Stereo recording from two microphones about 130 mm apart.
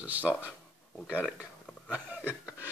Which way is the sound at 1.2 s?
Centre (ahead or behind).